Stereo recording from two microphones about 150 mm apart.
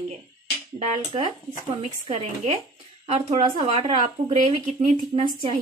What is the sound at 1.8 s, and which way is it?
A woman's voice, 45° right (ahead or behind).